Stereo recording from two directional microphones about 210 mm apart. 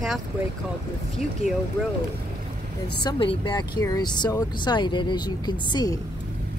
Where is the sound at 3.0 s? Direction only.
25° left (ahead or behind).